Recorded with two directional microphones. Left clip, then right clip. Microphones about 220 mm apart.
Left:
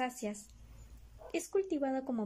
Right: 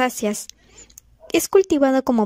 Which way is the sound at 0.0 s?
45° right (ahead or behind).